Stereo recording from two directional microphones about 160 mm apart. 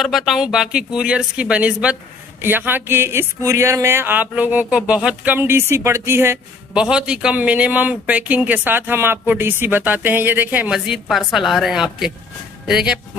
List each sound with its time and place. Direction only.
0.0 s speech: centre (ahead or behind)